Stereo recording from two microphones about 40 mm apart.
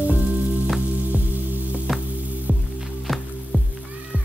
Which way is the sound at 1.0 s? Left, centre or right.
Right.